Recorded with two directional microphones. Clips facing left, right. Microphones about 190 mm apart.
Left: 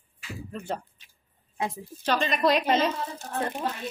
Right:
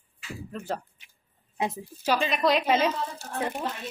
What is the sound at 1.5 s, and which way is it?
Speech, 20° right (ahead or behind).